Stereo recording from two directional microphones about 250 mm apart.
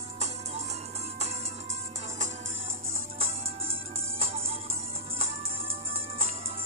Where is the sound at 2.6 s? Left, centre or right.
Right.